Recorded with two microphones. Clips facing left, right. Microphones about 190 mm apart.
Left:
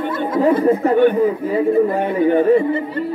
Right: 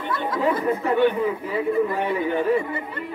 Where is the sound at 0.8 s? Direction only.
50° left (ahead or behind).